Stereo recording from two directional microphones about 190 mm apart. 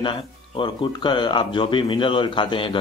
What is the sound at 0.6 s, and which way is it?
A man's voice, 25° left (ahead or behind).